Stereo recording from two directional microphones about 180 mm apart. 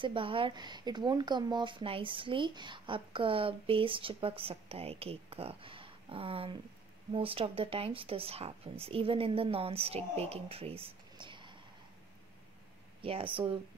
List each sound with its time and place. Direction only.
0.0 s speech: 30° right (ahead or behind)
13.0 s speech: 30° right (ahead or behind)